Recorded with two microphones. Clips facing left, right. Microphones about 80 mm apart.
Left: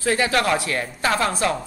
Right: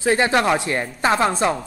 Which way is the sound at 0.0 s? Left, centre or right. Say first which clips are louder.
Right 3 dB; right.